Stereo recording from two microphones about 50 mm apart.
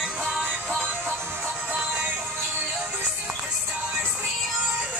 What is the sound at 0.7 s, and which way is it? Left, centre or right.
Music, right.